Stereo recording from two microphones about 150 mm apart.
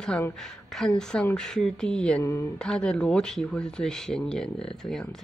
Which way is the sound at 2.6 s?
5° left (ahead or behind).